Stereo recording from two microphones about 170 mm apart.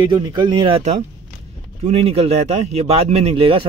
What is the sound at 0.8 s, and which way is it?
A man's voice, 40° right (ahead or behind).